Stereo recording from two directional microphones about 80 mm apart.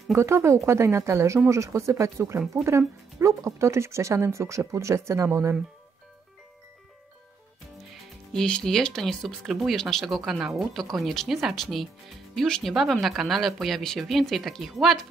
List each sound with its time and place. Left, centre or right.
0.1 s speech: right
8.3 s speech: centre